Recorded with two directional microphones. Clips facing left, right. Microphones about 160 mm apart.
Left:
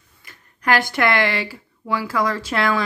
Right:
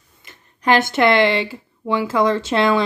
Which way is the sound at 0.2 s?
20° right (ahead or behind).